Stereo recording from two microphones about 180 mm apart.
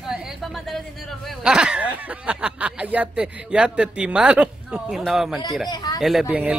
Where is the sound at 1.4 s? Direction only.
5° right (ahead or behind).